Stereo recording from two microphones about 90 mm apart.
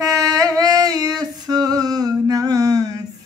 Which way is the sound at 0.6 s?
45° right (ahead or behind).